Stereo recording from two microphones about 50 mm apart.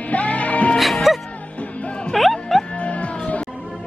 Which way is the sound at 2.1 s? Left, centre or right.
Centre.